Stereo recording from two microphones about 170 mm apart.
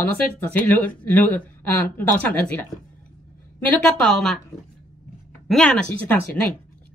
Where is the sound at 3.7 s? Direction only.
Centre (ahead or behind).